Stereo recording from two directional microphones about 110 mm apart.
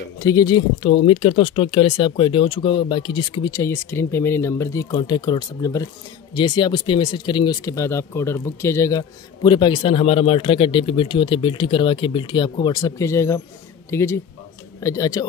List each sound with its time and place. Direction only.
0.2 s speech: 30° left (ahead or behind)
3.5 s speech: 25° left (ahead or behind)
4.9 s speech: 45° left (ahead or behind)
6.3 s speech: 45° left (ahead or behind); by 9.0 s 30° left (ahead or behind)
9.4 s speech: 45° left (ahead or behind)
12.9 s speech: 25° left (ahead or behind)